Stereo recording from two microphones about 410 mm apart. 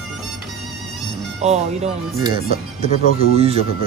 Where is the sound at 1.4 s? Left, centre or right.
Centre.